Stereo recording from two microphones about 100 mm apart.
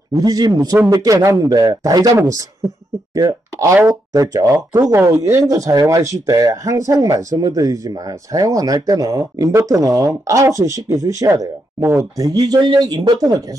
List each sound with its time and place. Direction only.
0.2 s speech: 40° right (ahead or behind)
4.1 s speech: 35° right (ahead or behind)
12.2 s speech: 40° right (ahead or behind)